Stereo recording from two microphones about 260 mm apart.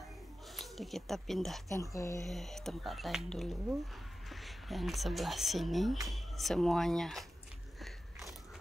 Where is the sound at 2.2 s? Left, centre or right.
Centre.